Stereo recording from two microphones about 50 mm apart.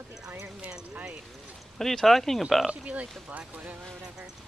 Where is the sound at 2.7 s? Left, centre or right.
Right.